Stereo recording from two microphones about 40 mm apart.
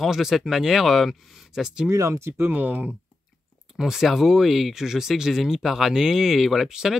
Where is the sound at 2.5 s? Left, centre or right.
Right.